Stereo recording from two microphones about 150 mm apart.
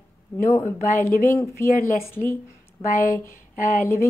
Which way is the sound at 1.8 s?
65° left (ahead or behind).